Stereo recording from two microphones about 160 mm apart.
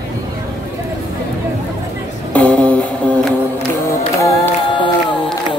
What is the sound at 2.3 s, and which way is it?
Music, 5° left (ahead or behind).